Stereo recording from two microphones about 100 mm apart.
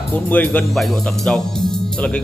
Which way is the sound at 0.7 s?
5° left (ahead or behind).